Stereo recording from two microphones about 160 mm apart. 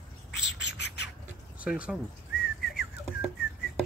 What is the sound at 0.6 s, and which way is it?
Bird, 90° left.